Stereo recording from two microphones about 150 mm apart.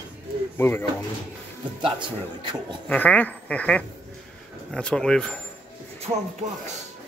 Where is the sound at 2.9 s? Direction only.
10° left (ahead or behind).